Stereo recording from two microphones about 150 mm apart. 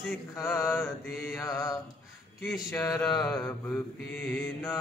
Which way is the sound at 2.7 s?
20° left (ahead or behind).